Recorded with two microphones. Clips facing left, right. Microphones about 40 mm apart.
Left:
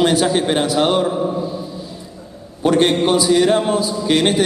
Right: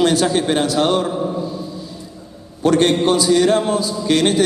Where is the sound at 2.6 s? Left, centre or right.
Centre.